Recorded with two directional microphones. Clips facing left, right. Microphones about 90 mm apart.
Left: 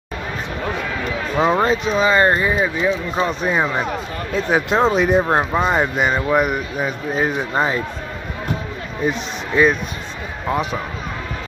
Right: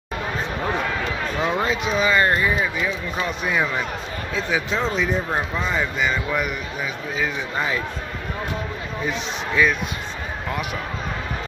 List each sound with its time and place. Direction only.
1.4 s speech: 35° left (ahead or behind)
4.3 s speech: 55° left (ahead or behind)
10.5 s speech: 30° left (ahead or behind)